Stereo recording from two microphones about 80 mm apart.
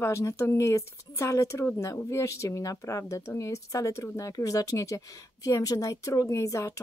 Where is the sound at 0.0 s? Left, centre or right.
Left.